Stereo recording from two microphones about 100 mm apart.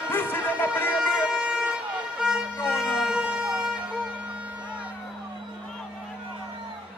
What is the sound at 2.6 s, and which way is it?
Vehicle, 20° left (ahead or behind).